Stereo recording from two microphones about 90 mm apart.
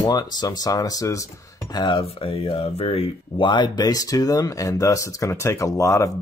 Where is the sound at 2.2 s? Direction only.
90° left; by 6.1 s 35° left (ahead or behind).